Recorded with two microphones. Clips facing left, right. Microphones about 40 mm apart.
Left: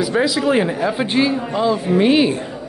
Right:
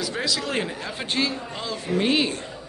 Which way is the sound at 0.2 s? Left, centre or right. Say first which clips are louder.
Left 9 dB; centre.